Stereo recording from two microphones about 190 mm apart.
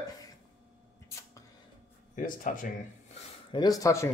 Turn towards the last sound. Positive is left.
turn(degrees=15)  # may be behind; listen again after turning